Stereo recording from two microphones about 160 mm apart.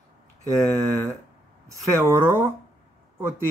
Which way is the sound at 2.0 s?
15° right (ahead or behind).